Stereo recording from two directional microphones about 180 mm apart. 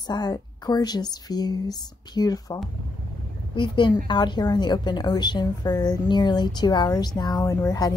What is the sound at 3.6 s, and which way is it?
A woman's voice, 25° left (ahead or behind).